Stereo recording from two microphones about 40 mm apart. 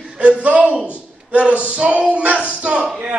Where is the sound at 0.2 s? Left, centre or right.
Right.